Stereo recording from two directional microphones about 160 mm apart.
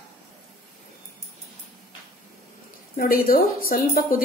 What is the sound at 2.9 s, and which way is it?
Speech, 65° left (ahead or behind).